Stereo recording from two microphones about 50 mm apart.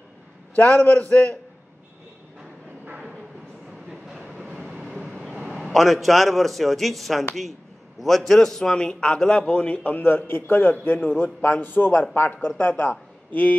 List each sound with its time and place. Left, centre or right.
0.9 s a man's voice: left
2.8 s vehicle: right
3.9 s train: centre
5.2 s a man's voice: centre
9.5 s a man's voice: left
13.3 s a man's voice: left